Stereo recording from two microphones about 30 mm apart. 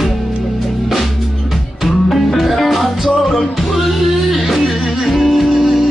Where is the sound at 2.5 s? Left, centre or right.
Centre.